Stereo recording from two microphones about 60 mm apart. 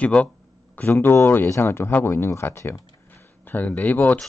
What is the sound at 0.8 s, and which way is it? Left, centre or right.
Speech, left.